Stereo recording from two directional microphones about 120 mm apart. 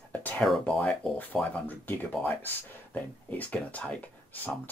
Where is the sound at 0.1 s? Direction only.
10° left (ahead or behind).